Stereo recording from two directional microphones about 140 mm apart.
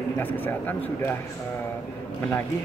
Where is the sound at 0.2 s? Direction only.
15° left (ahead or behind).